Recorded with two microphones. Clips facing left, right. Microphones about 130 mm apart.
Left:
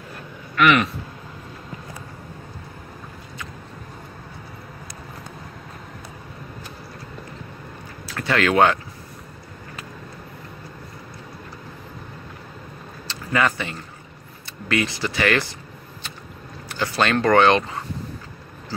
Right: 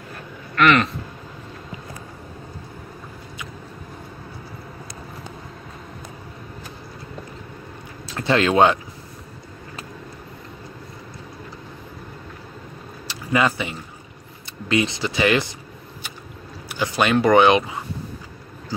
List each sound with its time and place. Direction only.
0.6 s speech: 10° left (ahead or behind)
8.1 s speech: 25° right (ahead or behind)
13.0 s keys jangling: 15° right (ahead or behind)
14.7 s speech: 20° right (ahead or behind)
16.6 s speech: 15° right (ahead or behind)